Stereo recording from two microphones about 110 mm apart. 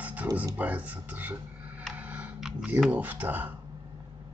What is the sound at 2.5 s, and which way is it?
Speech, 10° right (ahead or behind).